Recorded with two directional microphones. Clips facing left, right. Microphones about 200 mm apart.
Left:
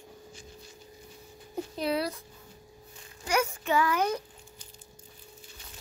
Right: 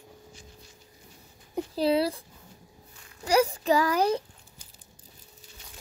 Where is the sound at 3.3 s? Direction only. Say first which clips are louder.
Right 5 dB; 35° right (ahead or behind).